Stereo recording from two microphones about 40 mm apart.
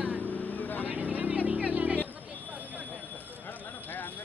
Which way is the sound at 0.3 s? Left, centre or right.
Left.